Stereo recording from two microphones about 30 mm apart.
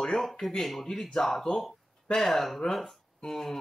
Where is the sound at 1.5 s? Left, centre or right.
Centre.